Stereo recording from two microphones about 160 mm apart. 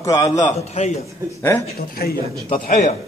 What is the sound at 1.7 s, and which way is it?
Speech, 70° left (ahead or behind).